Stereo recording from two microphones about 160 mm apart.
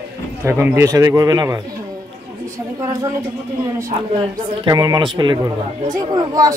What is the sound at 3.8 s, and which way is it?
Speech, 20° right (ahead or behind).